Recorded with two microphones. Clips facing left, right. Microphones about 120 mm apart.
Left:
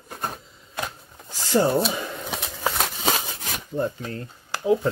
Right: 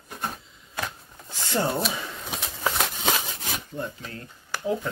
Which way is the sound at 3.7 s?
40° left (ahead or behind).